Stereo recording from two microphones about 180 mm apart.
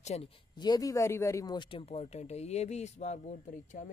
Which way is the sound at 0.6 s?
20° left (ahead or behind).